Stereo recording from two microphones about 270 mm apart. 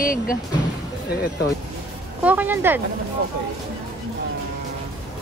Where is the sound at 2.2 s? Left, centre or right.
Centre.